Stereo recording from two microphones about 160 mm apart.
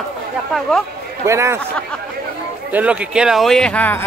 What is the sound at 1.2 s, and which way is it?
Speech, 15° right (ahead or behind).